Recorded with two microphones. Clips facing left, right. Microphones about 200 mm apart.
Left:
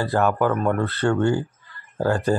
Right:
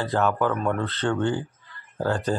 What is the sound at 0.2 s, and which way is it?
Speech, 10° left (ahead or behind).